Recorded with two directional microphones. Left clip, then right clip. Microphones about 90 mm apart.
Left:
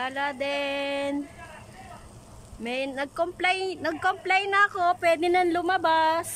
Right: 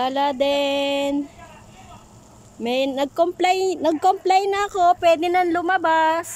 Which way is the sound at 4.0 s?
60° right (ahead or behind).